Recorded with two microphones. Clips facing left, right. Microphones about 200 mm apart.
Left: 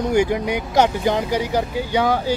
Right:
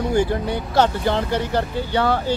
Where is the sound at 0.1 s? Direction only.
15° left (ahead or behind).